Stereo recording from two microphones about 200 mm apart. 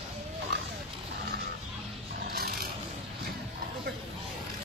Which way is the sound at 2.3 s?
50° right (ahead or behind).